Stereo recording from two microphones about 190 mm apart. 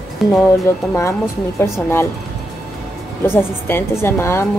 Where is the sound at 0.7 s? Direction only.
15° left (ahead or behind).